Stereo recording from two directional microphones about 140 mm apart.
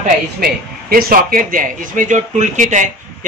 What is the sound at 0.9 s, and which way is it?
Speech, 90° right.